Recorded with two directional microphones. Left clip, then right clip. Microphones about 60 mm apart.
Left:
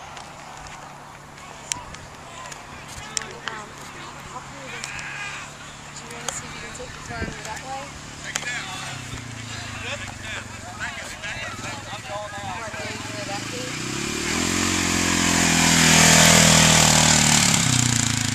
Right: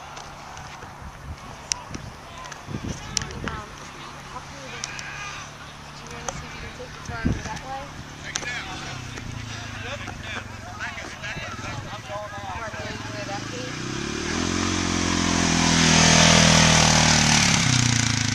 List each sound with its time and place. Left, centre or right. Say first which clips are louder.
4.8 s a sound: left 1 dB; left
10.2 s clip-clop: left 1 dB; centre
11.3 s vehicle: left 2 dB; left
16.3 s vehicle: left 1 dB; centre; by 18.3 s right